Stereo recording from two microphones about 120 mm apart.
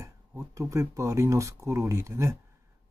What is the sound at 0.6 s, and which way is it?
Speech, 25° right (ahead or behind).